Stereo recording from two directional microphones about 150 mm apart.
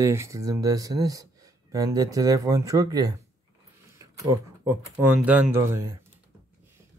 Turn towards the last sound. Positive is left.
turn(degrees=-15)  # may be behind; listen again after turning